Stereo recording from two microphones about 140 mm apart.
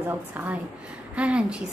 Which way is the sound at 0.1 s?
15° right (ahead or behind).